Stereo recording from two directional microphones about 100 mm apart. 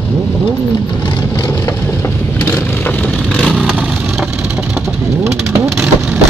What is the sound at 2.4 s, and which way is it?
Vehicle, 20° left (ahead or behind).